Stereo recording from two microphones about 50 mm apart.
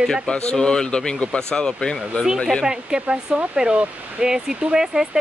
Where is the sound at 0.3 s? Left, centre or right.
Centre.